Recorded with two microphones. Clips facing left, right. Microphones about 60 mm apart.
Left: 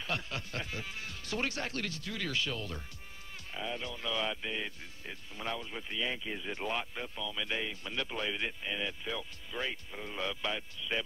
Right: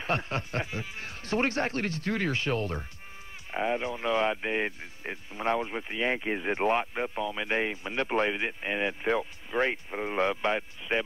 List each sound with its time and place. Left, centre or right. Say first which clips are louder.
0.0 s speech: right 7 dB; right